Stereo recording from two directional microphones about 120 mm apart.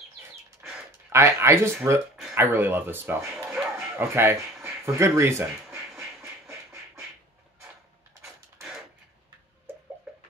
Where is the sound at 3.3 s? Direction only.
5° right (ahead or behind).